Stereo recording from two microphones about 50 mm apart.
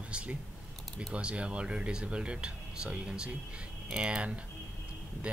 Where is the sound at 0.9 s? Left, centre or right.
Right.